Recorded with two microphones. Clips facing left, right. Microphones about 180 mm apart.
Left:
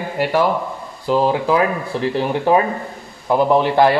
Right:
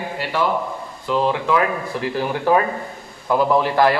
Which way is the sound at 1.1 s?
35° left (ahead or behind).